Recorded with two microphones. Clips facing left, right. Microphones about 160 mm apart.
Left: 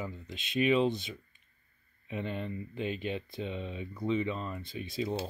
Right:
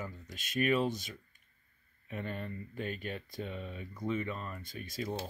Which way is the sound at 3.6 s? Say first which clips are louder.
Left 4 dB; 25° left (ahead or behind).